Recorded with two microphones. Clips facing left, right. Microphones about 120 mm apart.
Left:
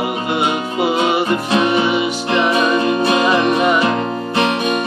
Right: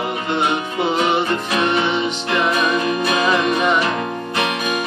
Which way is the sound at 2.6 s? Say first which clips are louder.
Left 4 dB; 30° left (ahead or behind).